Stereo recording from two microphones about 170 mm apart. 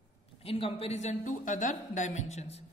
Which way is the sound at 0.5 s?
35° left (ahead or behind).